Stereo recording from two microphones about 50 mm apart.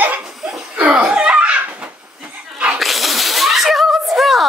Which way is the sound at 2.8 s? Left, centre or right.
Centre.